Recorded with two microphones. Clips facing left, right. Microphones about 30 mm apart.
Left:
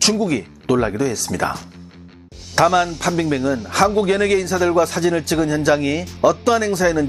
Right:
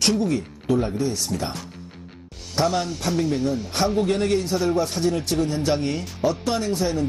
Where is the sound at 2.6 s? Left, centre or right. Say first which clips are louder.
Left 7 dB; left.